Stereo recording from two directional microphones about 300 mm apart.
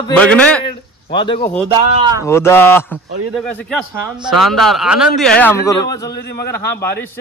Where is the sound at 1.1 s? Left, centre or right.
Centre.